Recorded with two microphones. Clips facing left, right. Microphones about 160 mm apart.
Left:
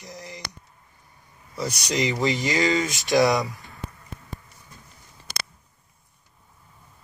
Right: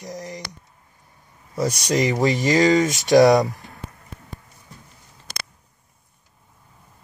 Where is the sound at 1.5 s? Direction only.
45° right (ahead or behind).